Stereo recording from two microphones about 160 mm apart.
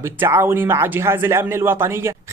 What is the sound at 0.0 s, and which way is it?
A man's voice, 15° right (ahead or behind).